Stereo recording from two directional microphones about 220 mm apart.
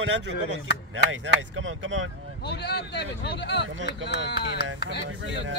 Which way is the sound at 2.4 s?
50° left (ahead or behind).